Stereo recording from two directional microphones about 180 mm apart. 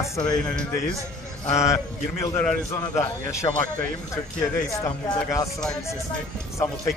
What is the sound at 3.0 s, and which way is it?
A man's voice, 15° left (ahead or behind).